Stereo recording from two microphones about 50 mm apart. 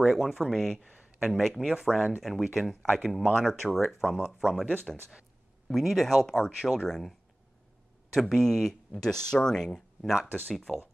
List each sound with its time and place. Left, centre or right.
0.0 s speech: centre
0.8 s a sound: centre
1.3 s speech: centre
1.8 s speech: centre
5.7 s speech: centre
10.2 s speech: right
10.5 s speech: centre